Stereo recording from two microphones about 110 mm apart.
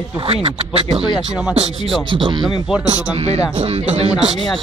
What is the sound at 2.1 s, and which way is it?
Speech, 50° right (ahead or behind).